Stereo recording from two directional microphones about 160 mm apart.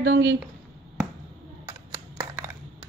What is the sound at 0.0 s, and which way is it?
Speech, 90° right.